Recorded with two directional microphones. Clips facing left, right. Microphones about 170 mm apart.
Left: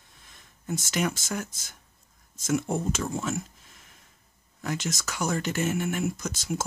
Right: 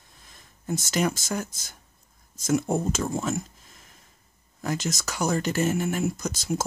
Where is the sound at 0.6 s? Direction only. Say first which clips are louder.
Right 3 dB; 40° right (ahead or behind).